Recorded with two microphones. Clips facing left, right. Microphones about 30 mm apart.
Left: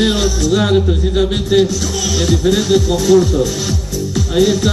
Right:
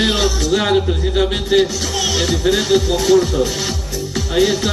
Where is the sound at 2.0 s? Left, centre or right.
Right.